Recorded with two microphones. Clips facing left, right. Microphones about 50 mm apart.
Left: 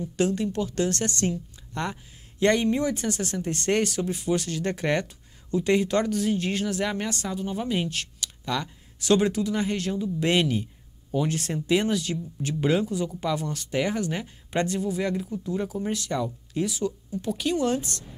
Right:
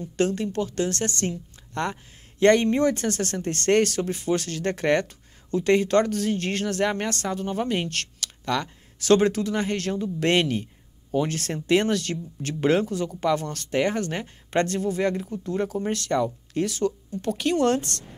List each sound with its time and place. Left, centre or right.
0.2 s speech: right